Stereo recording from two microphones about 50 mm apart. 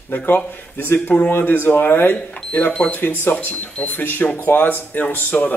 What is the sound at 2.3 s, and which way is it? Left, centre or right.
Speech, left.